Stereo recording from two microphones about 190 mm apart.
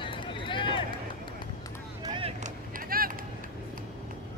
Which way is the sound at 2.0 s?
25° right (ahead or behind).